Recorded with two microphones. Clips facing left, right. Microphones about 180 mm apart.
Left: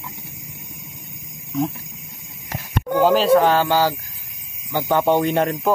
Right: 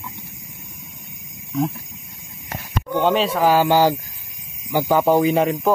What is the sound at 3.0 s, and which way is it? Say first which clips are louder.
Speech: left 4 dB; centre (ahead or behind).